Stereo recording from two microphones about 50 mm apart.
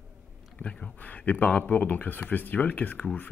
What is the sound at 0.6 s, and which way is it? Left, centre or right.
Speech, left.